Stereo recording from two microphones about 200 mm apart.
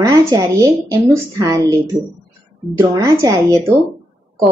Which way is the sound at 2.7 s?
15° right (ahead or behind).